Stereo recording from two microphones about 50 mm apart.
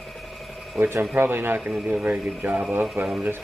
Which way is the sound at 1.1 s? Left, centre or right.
Right.